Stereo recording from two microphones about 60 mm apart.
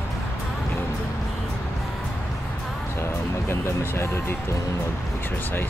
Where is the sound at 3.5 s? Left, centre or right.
Left.